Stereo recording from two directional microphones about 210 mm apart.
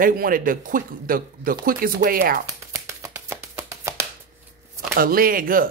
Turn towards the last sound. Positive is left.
turn(degrees=-40)  # may be behind; listen again after turning